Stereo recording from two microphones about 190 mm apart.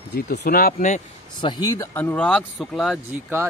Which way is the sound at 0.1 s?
60° left (ahead or behind).